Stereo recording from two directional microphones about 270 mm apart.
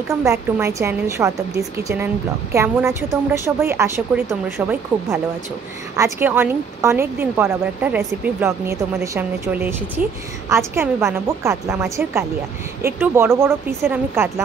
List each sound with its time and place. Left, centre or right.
0.2 s speech: centre